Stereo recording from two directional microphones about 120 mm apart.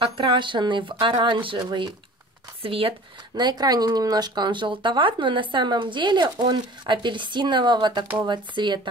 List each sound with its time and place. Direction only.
0.0 s speech: 40° right (ahead or behind)
2.6 s speech: 50° right (ahead or behind)
3.3 s speech: 35° right (ahead or behind)